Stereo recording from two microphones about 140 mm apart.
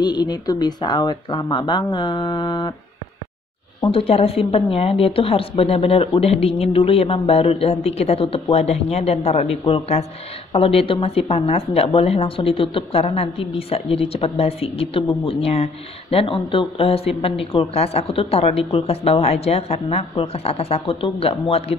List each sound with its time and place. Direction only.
0.0 s speech: 30° left (ahead or behind)
3.8 s speech: 40° left (ahead or behind)